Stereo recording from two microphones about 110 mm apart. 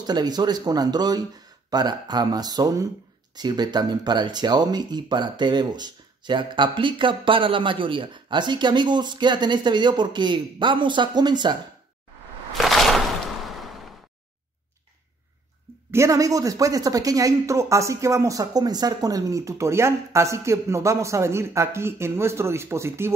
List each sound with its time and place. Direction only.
0.0 s speech: 40° right (ahead or behind)
12.5 s a sound: centre (ahead or behind)
15.9 s speech: 30° right (ahead or behind)